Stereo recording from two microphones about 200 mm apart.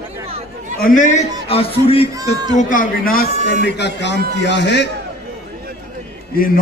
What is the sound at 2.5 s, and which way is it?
Speech, 40° left (ahead or behind).